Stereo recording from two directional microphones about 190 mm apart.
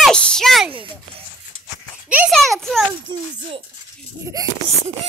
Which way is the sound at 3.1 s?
25° right (ahead or behind).